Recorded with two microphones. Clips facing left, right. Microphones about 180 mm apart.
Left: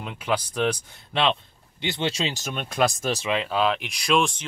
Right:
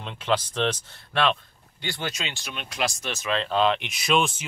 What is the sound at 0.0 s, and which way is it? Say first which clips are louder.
Speech: right 1 dB; 10° left (ahead or behind).